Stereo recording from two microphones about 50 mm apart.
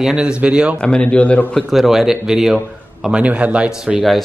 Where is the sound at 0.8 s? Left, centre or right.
Left.